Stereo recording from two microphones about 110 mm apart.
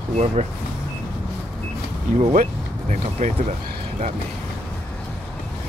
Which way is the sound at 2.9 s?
90° right.